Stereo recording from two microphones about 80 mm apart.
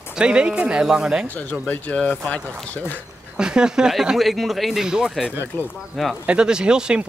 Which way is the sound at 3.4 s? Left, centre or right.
Centre.